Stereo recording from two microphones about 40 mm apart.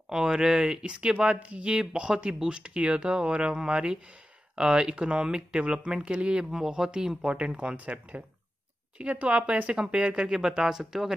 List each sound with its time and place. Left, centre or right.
0.1 s speech: centre
6.5 s speech: centre
10.3 s speech: centre